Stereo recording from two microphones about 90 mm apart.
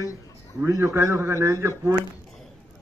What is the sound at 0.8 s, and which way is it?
Speech, 30° right (ahead or behind).